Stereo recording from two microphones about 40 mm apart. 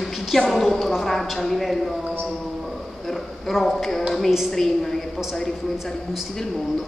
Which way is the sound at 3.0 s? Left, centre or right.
Centre.